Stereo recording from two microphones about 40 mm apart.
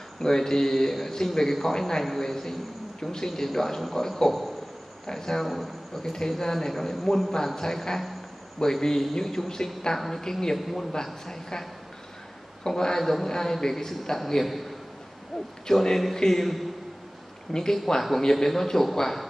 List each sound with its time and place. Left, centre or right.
0.2 s a man's voice: centre
12.6 s speech: centre
15.6 s speech: centre